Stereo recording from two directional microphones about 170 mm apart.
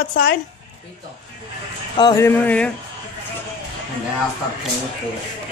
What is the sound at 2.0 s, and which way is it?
Speech, 15° left (ahead or behind).